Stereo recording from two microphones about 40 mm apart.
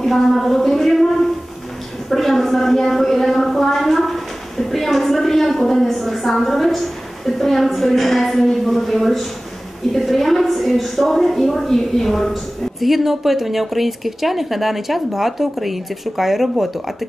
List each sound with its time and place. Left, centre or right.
0.0 s speech: centre
2.0 s a sound: centre
9.9 s speech: centre
12.8 s speech: centre